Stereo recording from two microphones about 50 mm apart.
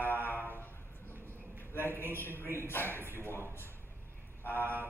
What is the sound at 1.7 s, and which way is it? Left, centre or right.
A man's voice, left.